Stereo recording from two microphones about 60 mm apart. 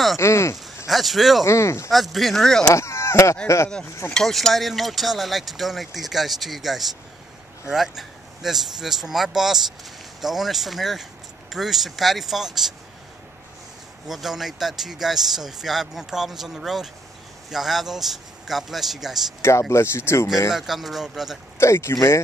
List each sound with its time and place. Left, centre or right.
0.2 s speech: left
0.8 s speech: centre
1.4 s speech: left
1.9 s speech: centre
2.7 s speech: left
4.1 s speech: centre
14.0 s speech: centre
19.7 s speech: left
20.5 s speech: centre
21.5 s speech: left